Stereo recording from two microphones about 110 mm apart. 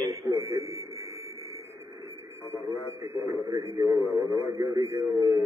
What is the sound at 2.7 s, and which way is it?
Radio, 30° right (ahead or behind).